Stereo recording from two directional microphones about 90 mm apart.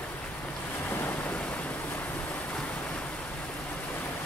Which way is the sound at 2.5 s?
10° left (ahead or behind).